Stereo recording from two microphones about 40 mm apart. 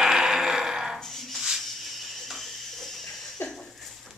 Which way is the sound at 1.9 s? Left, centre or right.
Centre.